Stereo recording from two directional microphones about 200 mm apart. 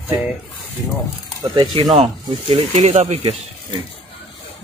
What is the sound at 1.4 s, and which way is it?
Speech, 20° right (ahead or behind).